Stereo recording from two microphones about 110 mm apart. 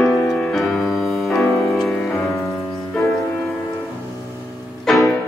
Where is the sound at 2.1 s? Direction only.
25° left (ahead or behind).